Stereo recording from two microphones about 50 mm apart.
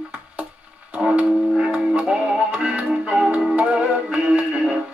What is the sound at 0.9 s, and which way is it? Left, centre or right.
Music, right.